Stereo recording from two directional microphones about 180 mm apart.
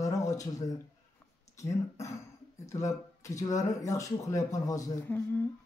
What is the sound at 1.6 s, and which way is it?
A man's voice, 15° left (ahead or behind).